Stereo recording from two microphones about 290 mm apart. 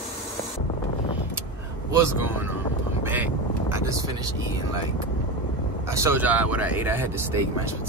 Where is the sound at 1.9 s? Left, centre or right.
Centre.